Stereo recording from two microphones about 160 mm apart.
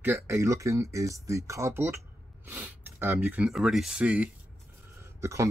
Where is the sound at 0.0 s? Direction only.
15° right (ahead or behind).